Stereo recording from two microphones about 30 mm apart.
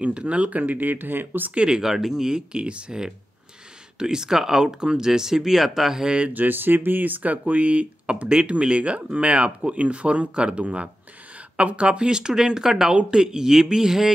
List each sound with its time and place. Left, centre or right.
0.1 s speech: right
0.5 s speech: right
1.8 s speech: centre
2.2 s speech: right
2.6 s speech: right
4.0 s speech: right
5.5 s speech: centre
6.3 s speech: right
8.1 s speech: right
12.1 s speech: right